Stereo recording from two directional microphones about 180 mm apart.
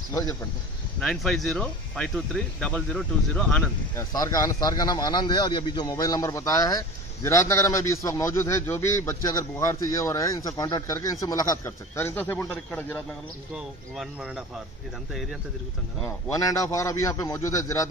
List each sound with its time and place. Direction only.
0.1 s speech: 20° left (ahead or behind)
1.0 s speech: centre (ahead or behind)
3.9 s speech: 20° left (ahead or behind)
13.6 s speech: 5° right (ahead or behind)
16.3 s speech: 20° left (ahead or behind)